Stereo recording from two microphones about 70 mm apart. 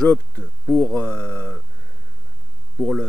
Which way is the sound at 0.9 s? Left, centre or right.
Centre.